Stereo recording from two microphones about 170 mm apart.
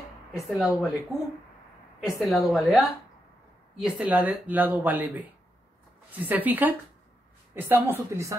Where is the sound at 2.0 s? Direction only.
Centre (ahead or behind).